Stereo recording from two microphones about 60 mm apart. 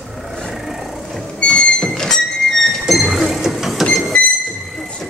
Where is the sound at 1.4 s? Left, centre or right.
Centre.